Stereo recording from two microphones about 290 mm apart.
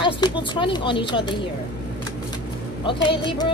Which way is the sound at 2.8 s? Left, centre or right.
Centre.